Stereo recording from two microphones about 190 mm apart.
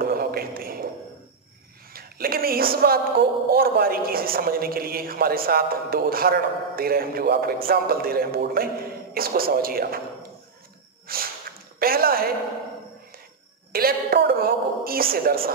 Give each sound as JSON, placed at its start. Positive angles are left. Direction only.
{"t": 0.0, "sound": "a sound", "side_deg": -50}
{"t": 2.0, "sound": "speech", "side_deg": -50}
{"t": 11.1, "sound": "a woman's voice", "side_deg": -50}
{"t": 13.7, "sound": "speech", "side_deg": -50}